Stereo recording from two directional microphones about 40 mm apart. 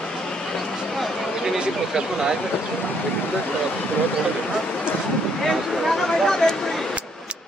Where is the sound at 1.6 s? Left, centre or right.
Centre.